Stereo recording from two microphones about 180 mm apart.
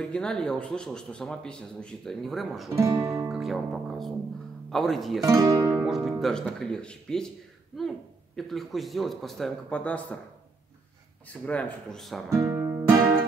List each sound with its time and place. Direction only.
0.0 s speech: 5° left (ahead or behind)
2.7 s music: 15° right (ahead or behind)
3.3 s speech: centre (ahead or behind)
5.2 s speech: 15° right (ahead or behind); by 7.2 s 5° left (ahead or behind)
8.4 s speech: centre (ahead or behind)
11.2 s speech: 5° left (ahead or behind)
12.4 s music: 15° right (ahead or behind)